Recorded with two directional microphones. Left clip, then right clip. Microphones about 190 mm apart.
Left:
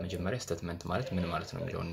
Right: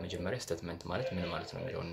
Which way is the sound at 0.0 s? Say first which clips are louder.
Left 1 dB; 15° left (ahead or behind).